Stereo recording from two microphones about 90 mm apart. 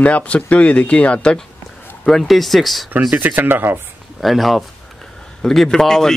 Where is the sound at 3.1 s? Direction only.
20° right (ahead or behind).